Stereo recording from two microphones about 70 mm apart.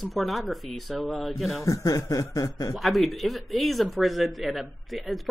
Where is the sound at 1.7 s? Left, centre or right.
Left.